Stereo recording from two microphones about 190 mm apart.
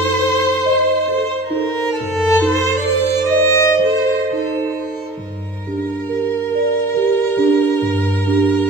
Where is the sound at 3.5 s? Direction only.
15° left (ahead or behind).